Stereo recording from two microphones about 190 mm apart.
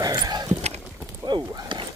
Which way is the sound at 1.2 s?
20° right (ahead or behind).